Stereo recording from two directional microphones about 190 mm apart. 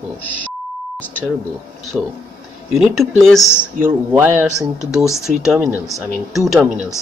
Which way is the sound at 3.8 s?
10° right (ahead or behind).